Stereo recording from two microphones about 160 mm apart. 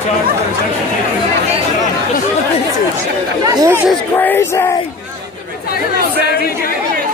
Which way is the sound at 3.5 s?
20° right (ahead or behind).